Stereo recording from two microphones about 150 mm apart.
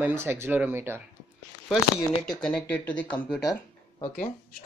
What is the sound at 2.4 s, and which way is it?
Speech, 5° left (ahead or behind).